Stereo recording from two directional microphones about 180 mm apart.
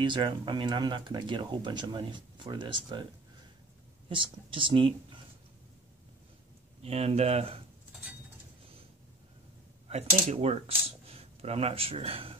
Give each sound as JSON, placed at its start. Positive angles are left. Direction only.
{"t": 0.0, "sound": "speech", "side_deg": -25}
{"t": 4.1, "sound": "speech", "side_deg": -30}
{"t": 6.8, "sound": "speech", "side_deg": -35}
{"t": 9.8, "sound": "speech", "side_deg": -35}